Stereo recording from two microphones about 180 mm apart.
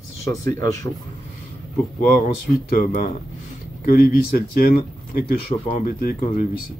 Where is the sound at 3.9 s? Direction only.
55° left (ahead or behind).